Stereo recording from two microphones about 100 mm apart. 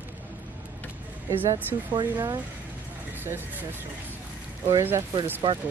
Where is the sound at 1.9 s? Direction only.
45° right (ahead or behind).